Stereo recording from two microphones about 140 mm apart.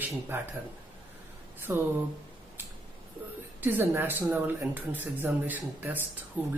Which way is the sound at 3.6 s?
15° right (ahead or behind).